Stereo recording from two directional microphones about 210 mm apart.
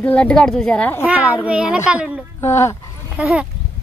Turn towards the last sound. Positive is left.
turn(degrees=-5)  # may be behind; listen again after turning